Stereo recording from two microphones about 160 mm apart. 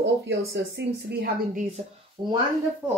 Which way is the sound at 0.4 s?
90° right.